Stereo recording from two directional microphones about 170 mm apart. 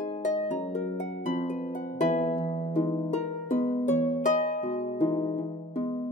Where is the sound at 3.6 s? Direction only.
40° left (ahead or behind).